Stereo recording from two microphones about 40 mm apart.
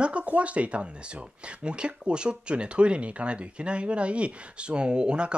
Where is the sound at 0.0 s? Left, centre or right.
Right.